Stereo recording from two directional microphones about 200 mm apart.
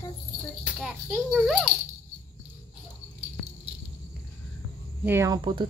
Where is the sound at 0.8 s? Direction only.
Centre (ahead or behind).